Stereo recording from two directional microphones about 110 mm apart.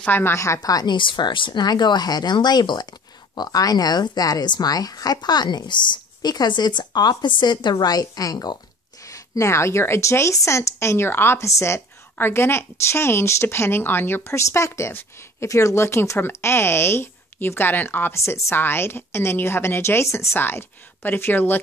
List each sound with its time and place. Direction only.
0.0 s a woman's voice: 20° left (ahead or behind)